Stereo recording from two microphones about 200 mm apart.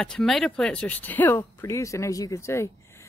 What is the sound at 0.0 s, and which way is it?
Speech, 5° left (ahead or behind).